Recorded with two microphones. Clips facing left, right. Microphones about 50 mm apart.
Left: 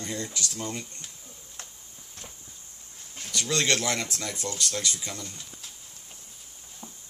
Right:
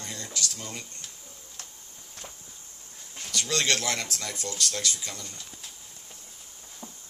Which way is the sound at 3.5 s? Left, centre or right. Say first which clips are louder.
Left 1 dB; left.